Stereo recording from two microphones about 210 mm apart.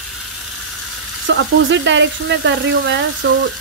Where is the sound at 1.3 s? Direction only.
60° right (ahead or behind).